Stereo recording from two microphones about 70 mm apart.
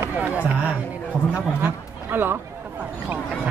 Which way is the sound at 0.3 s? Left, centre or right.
Centre.